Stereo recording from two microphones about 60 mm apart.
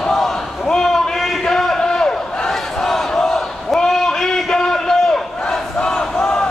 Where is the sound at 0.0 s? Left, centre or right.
Centre.